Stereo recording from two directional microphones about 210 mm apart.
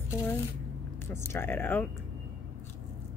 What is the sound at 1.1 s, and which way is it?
Speech, 10° left (ahead or behind).